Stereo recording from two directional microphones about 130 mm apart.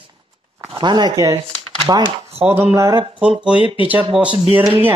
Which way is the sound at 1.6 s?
45° right (ahead or behind).